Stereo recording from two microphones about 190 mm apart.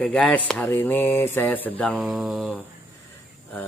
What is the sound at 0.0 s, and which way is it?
Speech, 5° left (ahead or behind).